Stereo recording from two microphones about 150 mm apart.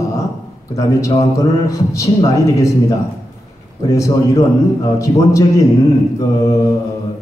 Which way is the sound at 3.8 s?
20° left (ahead or behind).